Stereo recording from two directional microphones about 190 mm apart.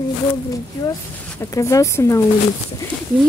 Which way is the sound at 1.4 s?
15° left (ahead or behind).